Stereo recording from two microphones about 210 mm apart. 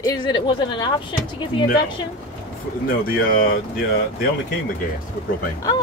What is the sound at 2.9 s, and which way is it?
Speech, 45° left (ahead or behind).